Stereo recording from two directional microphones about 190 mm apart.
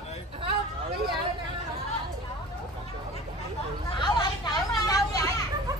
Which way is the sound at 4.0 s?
20° left (ahead or behind).